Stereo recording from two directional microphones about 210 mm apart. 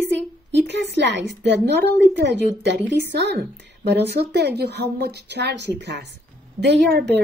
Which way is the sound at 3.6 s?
55° right (ahead or behind).